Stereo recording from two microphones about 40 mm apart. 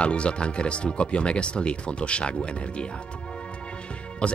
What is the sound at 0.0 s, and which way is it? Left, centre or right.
Speech, left.